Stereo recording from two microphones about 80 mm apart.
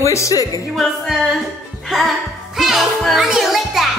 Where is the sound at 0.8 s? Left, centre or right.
Centre.